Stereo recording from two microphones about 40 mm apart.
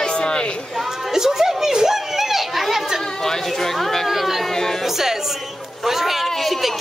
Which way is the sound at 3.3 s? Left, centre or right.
Centre.